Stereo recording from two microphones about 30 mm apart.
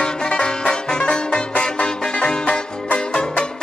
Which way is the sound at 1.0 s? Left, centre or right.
Left.